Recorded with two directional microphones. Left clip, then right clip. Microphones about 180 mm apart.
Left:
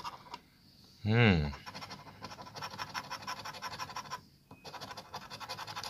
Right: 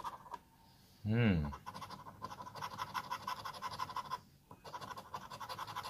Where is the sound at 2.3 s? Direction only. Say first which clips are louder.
Left 2 dB; centre (ahead or behind).